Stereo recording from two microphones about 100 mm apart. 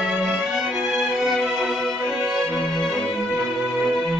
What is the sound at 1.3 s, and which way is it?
Music, centre (ahead or behind).